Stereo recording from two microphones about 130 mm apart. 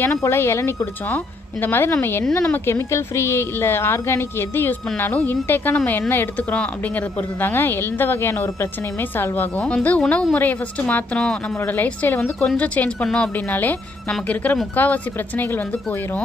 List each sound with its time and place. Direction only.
0.2 s a woman's voice: 20° left (ahead or behind)